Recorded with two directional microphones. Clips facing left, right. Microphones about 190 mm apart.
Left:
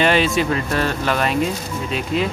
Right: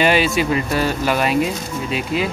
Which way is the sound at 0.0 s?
5° right (ahead or behind).